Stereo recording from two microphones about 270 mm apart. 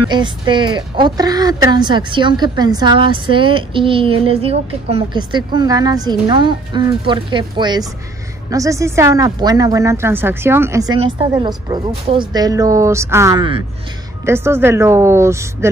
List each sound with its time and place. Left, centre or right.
0.1 s a woman's voice: centre